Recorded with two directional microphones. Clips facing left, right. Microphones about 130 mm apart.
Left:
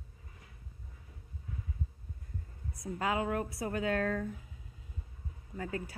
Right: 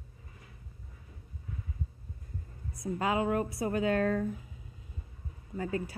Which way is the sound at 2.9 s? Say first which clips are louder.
Right 3 dB; 15° right (ahead or behind).